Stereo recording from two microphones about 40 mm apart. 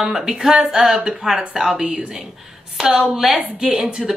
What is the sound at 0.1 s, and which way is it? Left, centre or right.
A woman's voice, centre.